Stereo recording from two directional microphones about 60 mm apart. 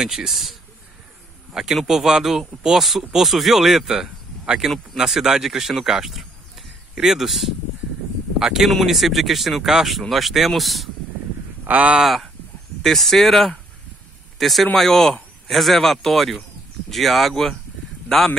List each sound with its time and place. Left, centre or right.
0.0 s speech: centre
11.6 s speech: right
12.0 s speech: centre